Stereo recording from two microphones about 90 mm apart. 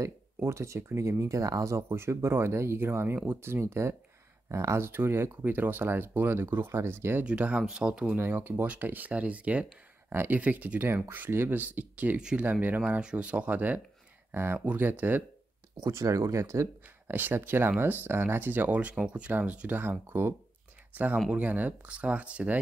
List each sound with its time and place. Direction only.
0.0 s speech: 35° right (ahead or behind)
7.2 s speech: 15° right (ahead or behind)
8.2 s speech: 20° right (ahead or behind)
15.8 s speech: 35° right (ahead or behind)
17.1 s speech: 20° right (ahead or behind)